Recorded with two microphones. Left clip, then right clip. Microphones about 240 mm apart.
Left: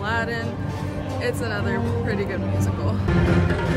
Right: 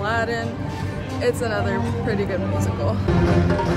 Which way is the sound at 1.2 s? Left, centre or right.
Centre.